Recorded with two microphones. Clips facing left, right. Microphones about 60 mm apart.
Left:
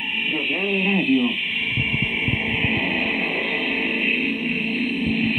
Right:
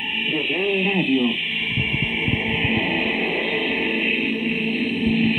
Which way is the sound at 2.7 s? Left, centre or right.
Centre.